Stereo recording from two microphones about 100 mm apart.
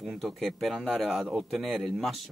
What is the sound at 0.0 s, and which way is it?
Speech, centre (ahead or behind).